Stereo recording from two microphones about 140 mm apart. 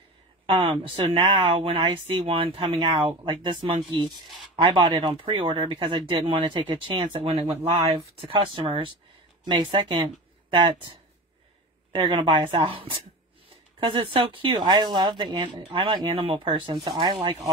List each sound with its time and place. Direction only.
0.5 s speech: 40° right (ahead or behind)
14.1 s speech: 40° right (ahead or behind)